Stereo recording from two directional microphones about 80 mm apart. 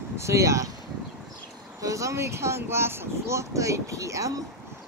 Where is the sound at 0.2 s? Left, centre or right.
Right.